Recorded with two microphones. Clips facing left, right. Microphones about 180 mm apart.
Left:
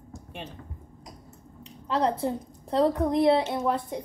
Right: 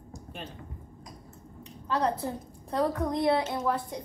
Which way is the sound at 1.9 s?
25° left (ahead or behind).